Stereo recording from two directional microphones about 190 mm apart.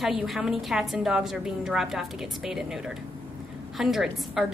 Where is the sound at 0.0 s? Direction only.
Centre (ahead or behind).